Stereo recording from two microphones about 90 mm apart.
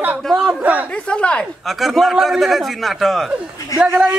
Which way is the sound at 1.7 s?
Centre (ahead or behind).